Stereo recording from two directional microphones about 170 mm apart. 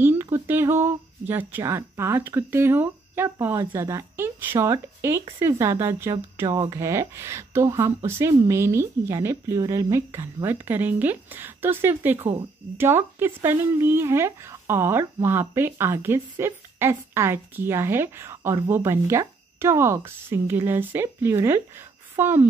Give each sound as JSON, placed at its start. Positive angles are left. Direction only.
{"t": 0.0, "sound": "speech", "side_deg": -15}